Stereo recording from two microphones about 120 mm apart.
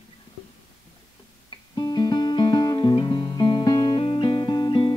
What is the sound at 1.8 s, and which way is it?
Music, 35° left (ahead or behind).